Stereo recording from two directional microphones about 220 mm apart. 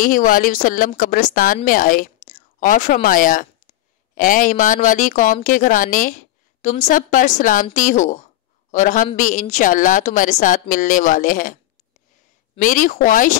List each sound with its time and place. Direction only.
0.0 s speech: 35° left (ahead or behind)
12.5 s speech: 35° left (ahead or behind)